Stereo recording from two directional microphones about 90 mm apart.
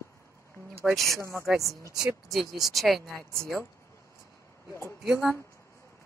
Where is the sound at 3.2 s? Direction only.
25° left (ahead or behind).